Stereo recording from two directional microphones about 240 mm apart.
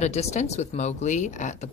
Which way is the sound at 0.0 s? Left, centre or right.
Left.